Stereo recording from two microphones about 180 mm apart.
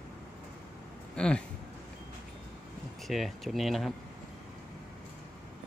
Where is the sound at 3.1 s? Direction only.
Centre (ahead or behind).